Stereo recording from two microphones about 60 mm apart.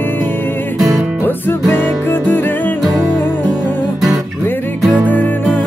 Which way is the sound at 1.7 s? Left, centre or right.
Left.